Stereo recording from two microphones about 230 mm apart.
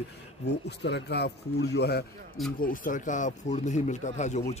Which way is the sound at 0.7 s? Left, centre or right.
Left.